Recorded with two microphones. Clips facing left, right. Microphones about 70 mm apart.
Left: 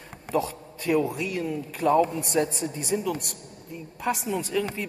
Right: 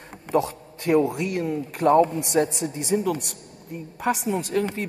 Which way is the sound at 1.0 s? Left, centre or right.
Right.